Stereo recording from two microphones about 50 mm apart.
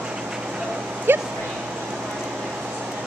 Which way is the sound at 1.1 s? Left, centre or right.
Right.